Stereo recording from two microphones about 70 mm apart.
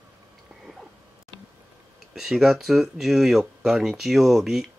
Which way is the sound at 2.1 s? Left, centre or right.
Centre.